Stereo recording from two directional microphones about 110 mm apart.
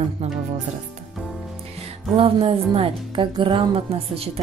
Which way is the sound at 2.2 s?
55° right (ahead or behind).